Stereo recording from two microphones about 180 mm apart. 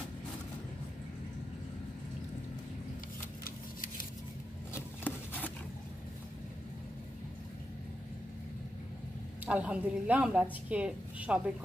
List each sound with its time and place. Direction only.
3.4 s scissors: 50° left (ahead or behind)
4.7 s a sound: 10° left (ahead or behind)
9.5 s a woman's voice: 5° right (ahead or behind)